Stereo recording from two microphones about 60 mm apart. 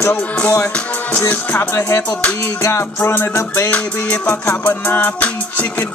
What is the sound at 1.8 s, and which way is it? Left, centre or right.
Music, left.